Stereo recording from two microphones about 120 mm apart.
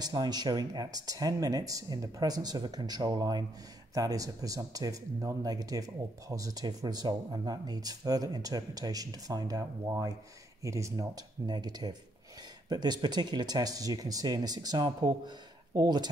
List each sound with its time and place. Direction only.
0.0 s speech: 35° right (ahead or behind)
11.4 s speech: 35° right (ahead or behind)